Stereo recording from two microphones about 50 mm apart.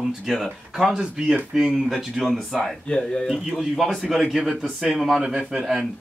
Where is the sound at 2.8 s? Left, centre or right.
Centre.